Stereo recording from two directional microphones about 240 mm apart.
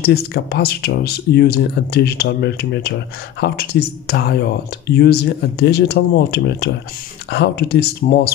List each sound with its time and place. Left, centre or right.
0.0 s speech: left